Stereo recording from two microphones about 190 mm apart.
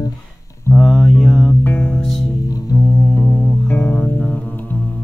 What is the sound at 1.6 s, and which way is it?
Music, 10° left (ahead or behind).